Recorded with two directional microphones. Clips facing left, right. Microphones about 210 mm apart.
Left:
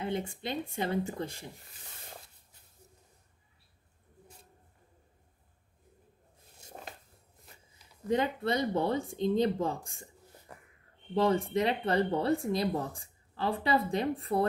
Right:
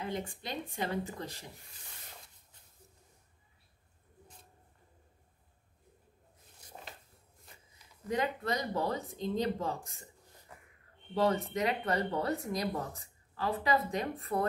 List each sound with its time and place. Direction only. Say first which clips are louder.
0.0 s speech: left 4 dB; 25° left (ahead or behind)
6.6 s a sound: left 3 dB; 25° left (ahead or behind)
8.1 s speech: left 4 dB; 30° left (ahead or behind)
11.2 s speech: left 2 dB; 30° left (ahead or behind)